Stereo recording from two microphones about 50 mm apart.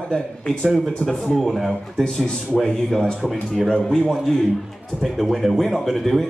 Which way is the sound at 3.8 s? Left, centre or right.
Centre.